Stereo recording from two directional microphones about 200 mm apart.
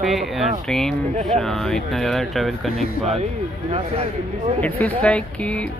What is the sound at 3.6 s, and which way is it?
Speech, 30° right (ahead or behind).